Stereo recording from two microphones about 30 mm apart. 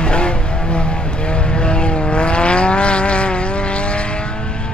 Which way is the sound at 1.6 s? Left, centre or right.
Left.